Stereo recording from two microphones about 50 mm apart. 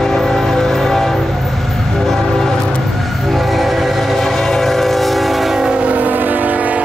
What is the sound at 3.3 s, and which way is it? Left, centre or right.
Train, centre.